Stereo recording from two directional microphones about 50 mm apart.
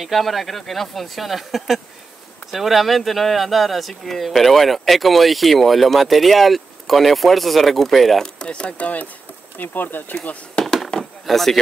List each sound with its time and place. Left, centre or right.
0.0 s speech: centre
8.4 s speech: left
9.6 s speech: left
10.6 s a sound: centre
11.2 s speech: centre